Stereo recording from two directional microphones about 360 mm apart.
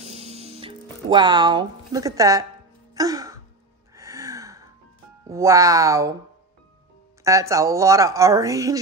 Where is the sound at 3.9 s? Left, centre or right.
Centre.